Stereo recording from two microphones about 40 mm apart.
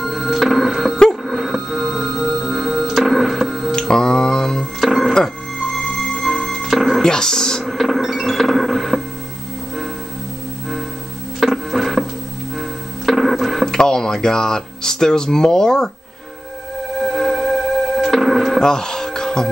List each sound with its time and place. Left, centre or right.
0.0 s music: centre
3.7 s a sound: centre
4.7 s music: centre
7.0 s a sound: centre
7.6 s music: centre
11.3 s music: centre
13.7 s speech: centre
17.0 s music: centre
18.6 s livestock: centre